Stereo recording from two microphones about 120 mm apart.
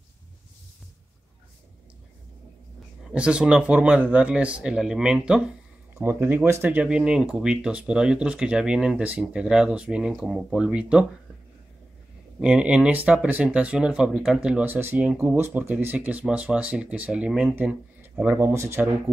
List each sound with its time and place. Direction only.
3.1 s speech: 10° right (ahead or behind)
12.4 s speech: 10° right (ahead or behind)
18.5 s speech: 20° right (ahead or behind)